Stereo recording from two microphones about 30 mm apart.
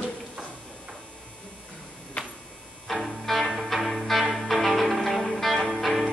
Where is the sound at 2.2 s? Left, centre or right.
Left.